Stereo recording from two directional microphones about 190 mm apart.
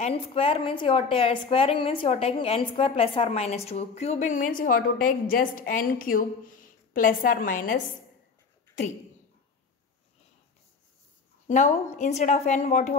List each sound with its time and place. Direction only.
0.0 s a woman's voice: 30° left (ahead or behind)
11.4 s a woman's voice: 40° left (ahead or behind)